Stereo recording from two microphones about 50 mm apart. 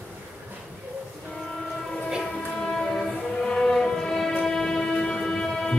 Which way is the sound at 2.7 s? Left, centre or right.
Centre.